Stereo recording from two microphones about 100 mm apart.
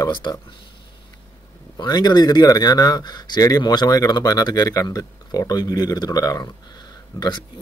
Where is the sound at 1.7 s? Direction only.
45° left (ahead or behind).